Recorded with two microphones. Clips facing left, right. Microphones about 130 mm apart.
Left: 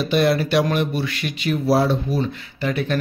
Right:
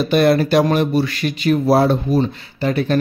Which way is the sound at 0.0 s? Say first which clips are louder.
Right 4 dB; 50° right (ahead or behind).